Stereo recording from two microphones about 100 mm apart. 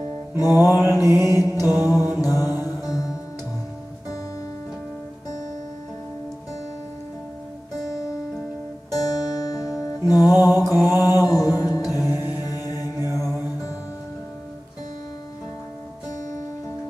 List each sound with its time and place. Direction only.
0.4 s music: 40° left (ahead or behind)
0.8 s mantra: 25° right (ahead or behind)
1.3 s music: 35° left (ahead or behind)
1.9 s mantra: 20° right (ahead or behind)
2.2 s mantra: 40° left (ahead or behind)
2.8 s music: 40° left (ahead or behind)
8.9 s music: 40° left (ahead or behind)
10.8 s mantra: 40° left (ahead or behind)
12.0 s music: 25° right (ahead or behind)
12.4 s mantra: 40° left (ahead or behind)